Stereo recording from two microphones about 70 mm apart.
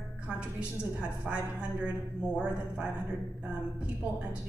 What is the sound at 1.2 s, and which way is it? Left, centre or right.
A man's voice, centre.